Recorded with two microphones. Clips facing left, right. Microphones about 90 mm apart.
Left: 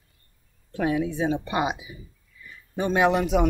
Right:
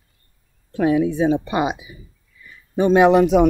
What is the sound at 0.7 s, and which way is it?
Speech, 25° right (ahead or behind).